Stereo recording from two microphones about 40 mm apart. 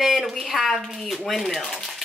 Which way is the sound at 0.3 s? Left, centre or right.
Centre.